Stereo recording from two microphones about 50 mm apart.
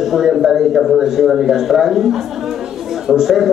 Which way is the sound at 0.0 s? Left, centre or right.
Centre.